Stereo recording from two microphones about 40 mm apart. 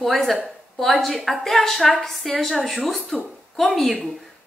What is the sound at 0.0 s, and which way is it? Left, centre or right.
A woman's voice, centre.